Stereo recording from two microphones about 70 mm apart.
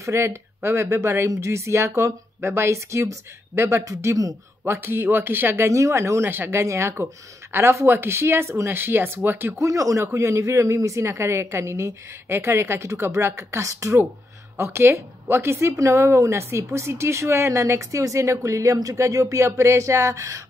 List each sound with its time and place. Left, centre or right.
0.0 s a woman's voice: right
4.6 s speech: right
5.7 s a woman's voice: right
6.2 s speech: right
9.6 s a woman's voice: right
14.6 s a woman's voice: right